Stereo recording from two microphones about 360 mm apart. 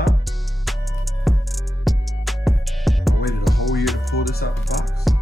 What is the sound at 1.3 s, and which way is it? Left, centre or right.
Music, centre.